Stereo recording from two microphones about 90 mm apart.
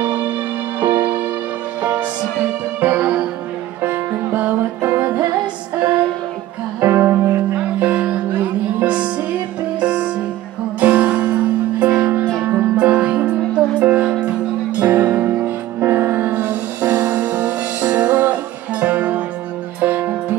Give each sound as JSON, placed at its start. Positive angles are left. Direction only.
{"t": 0.0, "sound": "music", "side_deg": -15}
{"t": 2.8, "sound": "music", "side_deg": -20}
{"t": 6.8, "sound": "music", "side_deg": -25}